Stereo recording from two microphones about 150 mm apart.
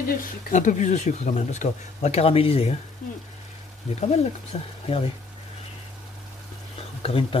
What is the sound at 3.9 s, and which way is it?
Speech, 45° left (ahead or behind).